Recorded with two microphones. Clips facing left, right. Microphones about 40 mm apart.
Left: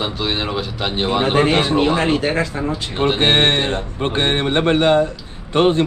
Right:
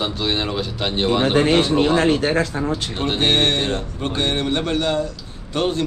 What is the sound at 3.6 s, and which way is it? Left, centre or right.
A man's voice, left.